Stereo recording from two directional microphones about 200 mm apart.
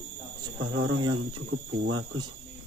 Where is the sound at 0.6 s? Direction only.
90° right.